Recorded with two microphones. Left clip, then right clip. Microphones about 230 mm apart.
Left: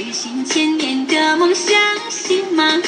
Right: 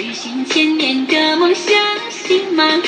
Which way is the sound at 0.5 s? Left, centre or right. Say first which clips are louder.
Right 3 dB; left.